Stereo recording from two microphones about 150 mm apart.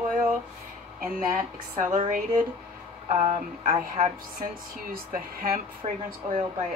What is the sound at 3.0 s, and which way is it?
Speech, 45° right (ahead or behind).